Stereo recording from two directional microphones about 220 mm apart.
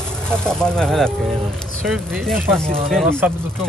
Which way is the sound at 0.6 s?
5° left (ahead or behind).